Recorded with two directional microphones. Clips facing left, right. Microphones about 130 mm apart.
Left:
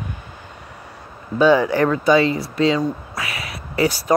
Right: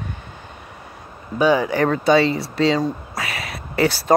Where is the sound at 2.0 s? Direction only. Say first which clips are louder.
Right 1 dB; 30° right (ahead or behind).